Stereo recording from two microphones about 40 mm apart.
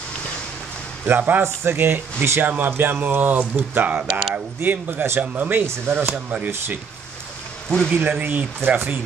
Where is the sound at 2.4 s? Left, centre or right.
Right.